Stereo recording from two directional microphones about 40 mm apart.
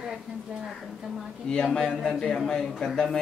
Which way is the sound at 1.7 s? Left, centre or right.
Centre.